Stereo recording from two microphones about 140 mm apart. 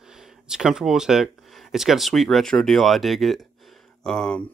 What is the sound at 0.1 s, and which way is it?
Speech, 5° right (ahead or behind).